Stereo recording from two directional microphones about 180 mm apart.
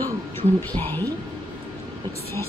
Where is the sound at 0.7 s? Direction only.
10° left (ahead or behind).